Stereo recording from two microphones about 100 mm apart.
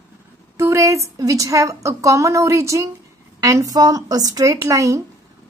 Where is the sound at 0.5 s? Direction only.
30° right (ahead or behind).